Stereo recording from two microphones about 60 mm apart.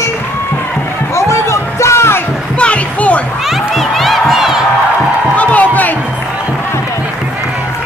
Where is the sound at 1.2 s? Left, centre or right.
Left.